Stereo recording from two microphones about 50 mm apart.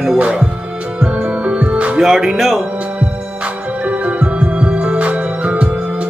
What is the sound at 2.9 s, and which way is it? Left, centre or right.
Music, right.